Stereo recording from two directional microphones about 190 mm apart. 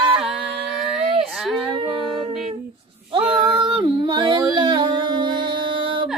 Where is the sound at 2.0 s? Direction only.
Centre (ahead or behind).